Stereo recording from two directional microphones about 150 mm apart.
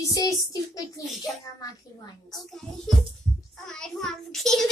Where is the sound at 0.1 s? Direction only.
25° left (ahead or behind).